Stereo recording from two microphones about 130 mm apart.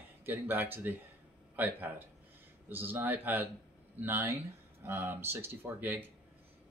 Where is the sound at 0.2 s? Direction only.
15° right (ahead or behind).